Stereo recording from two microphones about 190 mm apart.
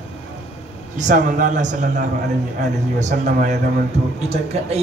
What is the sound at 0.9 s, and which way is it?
Speech, 40° right (ahead or behind).